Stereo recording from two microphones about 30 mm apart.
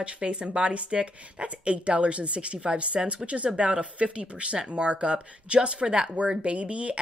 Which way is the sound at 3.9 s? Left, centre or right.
Right.